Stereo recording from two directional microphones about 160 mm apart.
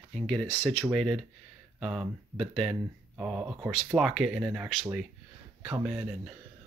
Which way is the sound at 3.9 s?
Centre (ahead or behind).